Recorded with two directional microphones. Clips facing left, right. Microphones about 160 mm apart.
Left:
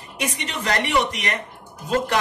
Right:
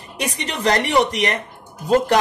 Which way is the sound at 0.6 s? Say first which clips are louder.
Right 5 dB; 35° right (ahead or behind).